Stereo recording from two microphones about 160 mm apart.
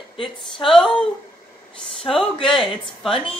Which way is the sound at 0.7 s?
5° left (ahead or behind).